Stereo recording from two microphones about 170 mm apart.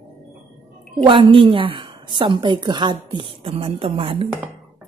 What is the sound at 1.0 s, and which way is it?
A woman's voice, 30° right (ahead or behind).